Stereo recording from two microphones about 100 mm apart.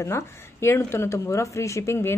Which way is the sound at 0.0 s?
25° left (ahead or behind).